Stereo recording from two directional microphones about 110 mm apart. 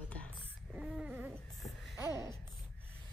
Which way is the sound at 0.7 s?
5° right (ahead or behind).